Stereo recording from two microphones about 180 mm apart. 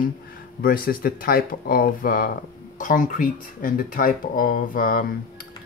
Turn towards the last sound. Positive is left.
turn(degrees=50)  # may be behind; listen again after turning